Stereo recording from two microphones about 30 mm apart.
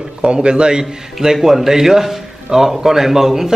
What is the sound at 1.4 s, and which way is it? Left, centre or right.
A man's voice, centre.